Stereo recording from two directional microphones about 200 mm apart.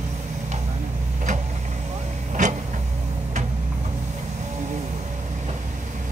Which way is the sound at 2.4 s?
40° right (ahead or behind).